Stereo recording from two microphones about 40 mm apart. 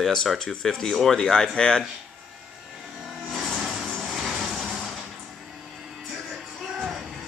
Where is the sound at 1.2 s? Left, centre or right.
Centre.